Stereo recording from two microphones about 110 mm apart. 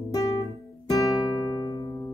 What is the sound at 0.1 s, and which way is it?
Music, 30° left (ahead or behind).